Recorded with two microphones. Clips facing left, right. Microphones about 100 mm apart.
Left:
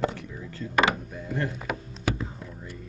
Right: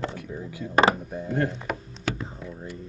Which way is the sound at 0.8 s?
35° right (ahead or behind).